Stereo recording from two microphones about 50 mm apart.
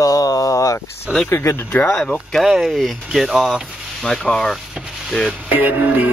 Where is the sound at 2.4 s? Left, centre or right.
Centre.